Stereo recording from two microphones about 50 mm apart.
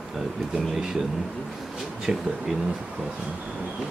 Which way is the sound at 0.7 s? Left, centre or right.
Centre.